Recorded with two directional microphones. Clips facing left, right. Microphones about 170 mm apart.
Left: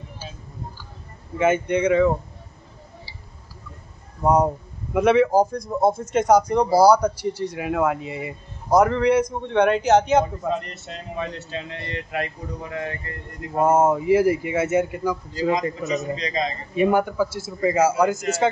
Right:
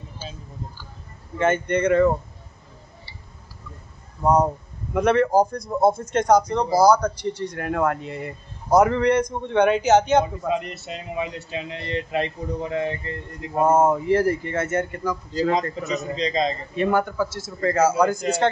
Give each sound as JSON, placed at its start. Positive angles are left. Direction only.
{"t": 1.4, "sound": "a man's voice", "side_deg": 5}
{"t": 4.2, "sound": "a man's voice", "side_deg": 10}
{"t": 13.7, "sound": "a man's voice", "side_deg": 5}
{"t": 16.2, "sound": "a man's voice", "side_deg": -30}
{"t": 16.7, "sound": "a man's voice", "side_deg": 10}